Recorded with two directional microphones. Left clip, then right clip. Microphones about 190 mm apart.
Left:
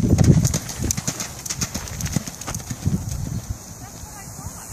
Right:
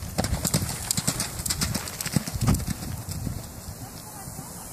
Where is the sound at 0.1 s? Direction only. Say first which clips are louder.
Left 3 dB; centre (ahead or behind).